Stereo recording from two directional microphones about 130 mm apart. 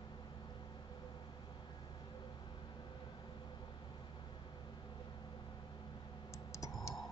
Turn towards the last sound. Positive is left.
turn(degrees=25)  # may be behind; listen again after turning